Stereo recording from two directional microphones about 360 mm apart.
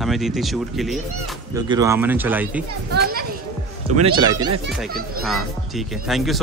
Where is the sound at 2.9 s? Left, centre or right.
Right.